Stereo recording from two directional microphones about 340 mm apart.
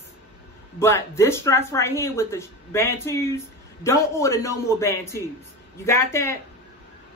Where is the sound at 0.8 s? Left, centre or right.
Centre.